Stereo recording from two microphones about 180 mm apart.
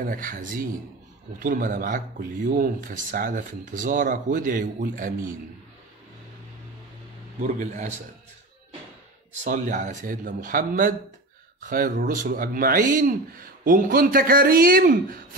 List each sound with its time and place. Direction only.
0.0 s speech: 50° right (ahead or behind)
7.4 s speech: 45° right (ahead or behind)
9.3 s speech: 40° right (ahead or behind)